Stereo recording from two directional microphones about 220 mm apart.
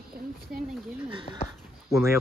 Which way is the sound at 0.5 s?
40° right (ahead or behind).